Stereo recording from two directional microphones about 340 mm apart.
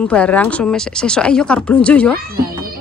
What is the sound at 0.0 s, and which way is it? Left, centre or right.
Speech, centre.